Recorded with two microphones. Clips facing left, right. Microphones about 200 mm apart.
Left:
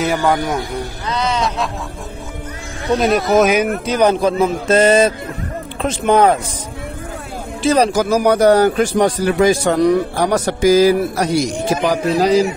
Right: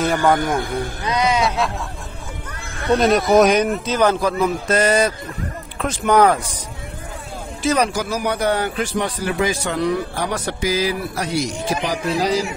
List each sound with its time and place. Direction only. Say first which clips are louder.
0.1 s speech: right 1 dB; centre (ahead or behind)
1.0 s speech: right 1 dB; 15° right (ahead or behind)
3.0 s speech: even; centre (ahead or behind)
3.8 s a man's voice: left 3 dB; 15° left (ahead or behind)
7.6 s a man's voice: left 5 dB; 30° left (ahead or behind); by 12.4 s 55° left (ahead or behind)